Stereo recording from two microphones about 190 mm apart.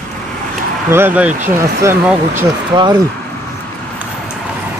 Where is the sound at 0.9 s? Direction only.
10° right (ahead or behind).